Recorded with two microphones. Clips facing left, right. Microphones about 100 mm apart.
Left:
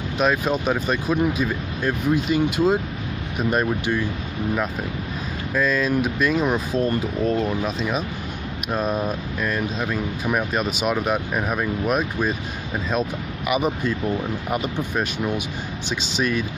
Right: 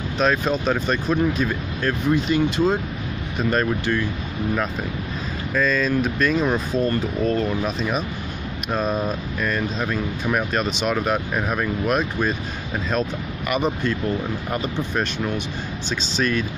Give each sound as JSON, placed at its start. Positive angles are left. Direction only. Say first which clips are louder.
{"t": 0.2, "sound": "speech", "louder": "even", "side_deg": 10}
{"t": 5.5, "sound": "speech", "louder": "even", "side_deg": 10}